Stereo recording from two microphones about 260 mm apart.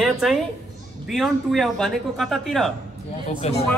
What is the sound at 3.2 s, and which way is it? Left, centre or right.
Speech, left.